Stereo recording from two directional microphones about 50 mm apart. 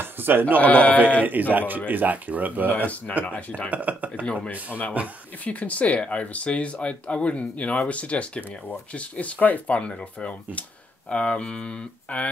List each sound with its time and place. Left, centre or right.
0.0 s bleat: right
0.6 s speech: left
1.2 s speech: right
2.7 s speech: left
3.7 s speech: right
4.2 s speech: left
5.0 s speech: right
5.4 s speech: left